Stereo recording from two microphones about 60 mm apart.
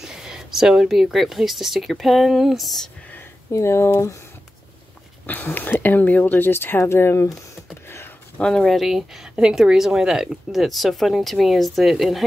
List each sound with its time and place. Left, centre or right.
0.0 s speech: centre
3.5 s speech: left
5.2 s speech: left
8.4 s speech: centre
8.7 s speech: centre